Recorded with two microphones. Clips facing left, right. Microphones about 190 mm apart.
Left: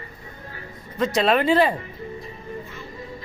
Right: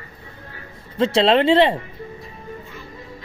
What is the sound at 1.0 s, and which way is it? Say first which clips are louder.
Speech: right 4 dB; 25° right (ahead or behind).